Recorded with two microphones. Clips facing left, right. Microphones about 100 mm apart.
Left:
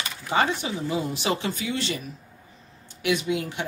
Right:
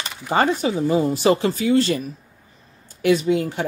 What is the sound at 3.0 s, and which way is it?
Speech, 40° right (ahead or behind).